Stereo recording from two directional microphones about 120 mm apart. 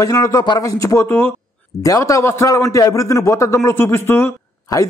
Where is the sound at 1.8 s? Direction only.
30° left (ahead or behind).